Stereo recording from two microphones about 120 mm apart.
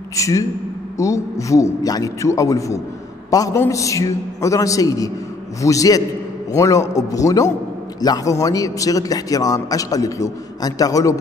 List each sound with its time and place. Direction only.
0.1 s a man's voice: 25° left (ahead or behind)